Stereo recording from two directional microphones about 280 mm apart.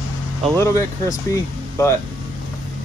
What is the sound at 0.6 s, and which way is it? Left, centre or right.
Speech, centre.